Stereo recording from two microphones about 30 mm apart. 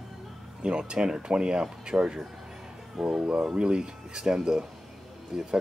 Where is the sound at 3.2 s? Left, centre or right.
Right.